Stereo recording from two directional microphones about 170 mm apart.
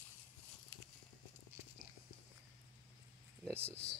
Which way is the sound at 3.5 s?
15° right (ahead or behind).